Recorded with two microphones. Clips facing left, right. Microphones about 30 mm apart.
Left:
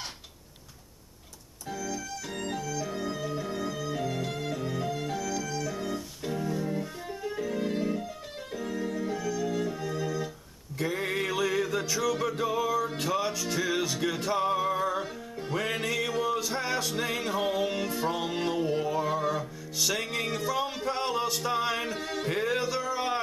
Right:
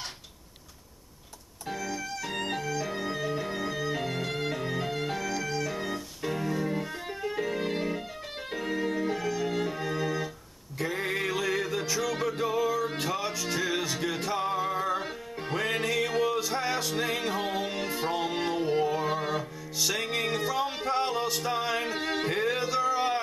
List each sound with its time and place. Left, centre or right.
1.9 s music: right
10.8 s music: centre; by 19.4 s right
19.8 s music: centre
21.8 s a sound: right
22.3 s music: centre